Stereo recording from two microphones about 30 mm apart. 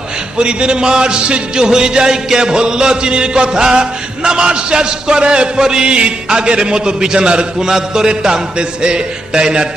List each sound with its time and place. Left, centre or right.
0.4 s music: right
7.6 s music: right